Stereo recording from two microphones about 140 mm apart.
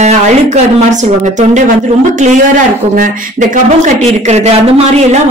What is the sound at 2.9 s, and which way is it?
Speech, 70° right (ahead or behind).